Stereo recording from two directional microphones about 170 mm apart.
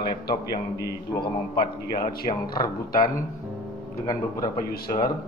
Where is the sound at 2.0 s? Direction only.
60° left (ahead or behind).